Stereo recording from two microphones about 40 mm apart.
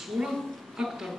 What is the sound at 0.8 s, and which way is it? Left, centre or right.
Speech, centre.